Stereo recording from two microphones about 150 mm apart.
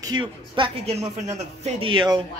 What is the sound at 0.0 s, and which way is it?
Speech, 30° right (ahead or behind).